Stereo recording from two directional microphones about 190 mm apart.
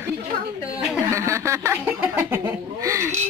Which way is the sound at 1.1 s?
15° right (ahead or behind).